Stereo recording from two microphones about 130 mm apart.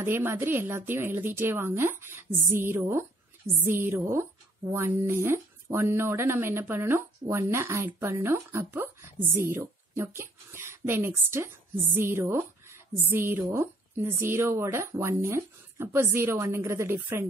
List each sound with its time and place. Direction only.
0.0 s speech: 15° right (ahead or behind)